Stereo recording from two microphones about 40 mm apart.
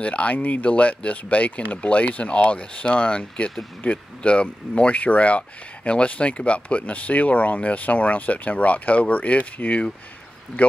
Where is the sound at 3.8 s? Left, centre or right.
Left.